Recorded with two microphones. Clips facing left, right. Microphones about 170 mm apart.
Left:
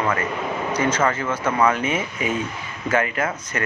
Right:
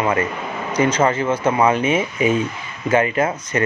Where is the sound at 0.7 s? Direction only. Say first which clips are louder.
Right 5 dB; 15° right (ahead or behind).